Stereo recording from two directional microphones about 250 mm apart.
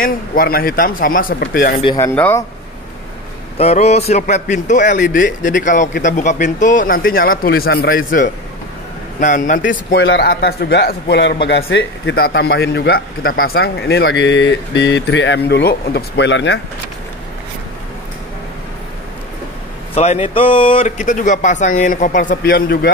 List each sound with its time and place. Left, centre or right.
0.0 s speech: left
1.8 s speech: centre
2.1 s speech: centre
3.5 s speech: left
20.0 s speech: left